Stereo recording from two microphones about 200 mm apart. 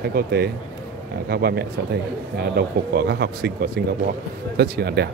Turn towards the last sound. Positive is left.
turn(degrees=-55)  # may be behind; listen again after turning